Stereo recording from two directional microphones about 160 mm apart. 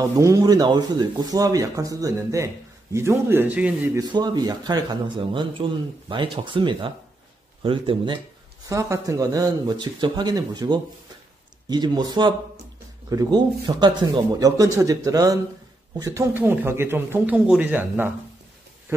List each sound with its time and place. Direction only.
0.0 s speech: 20° right (ahead or behind)
4.0 s speech: 25° right (ahead or behind)
8.6 s speech: 20° right (ahead or behind)
18.9 s a sound: 15° right (ahead or behind)